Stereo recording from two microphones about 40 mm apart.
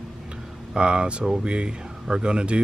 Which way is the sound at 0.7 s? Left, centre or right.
Right.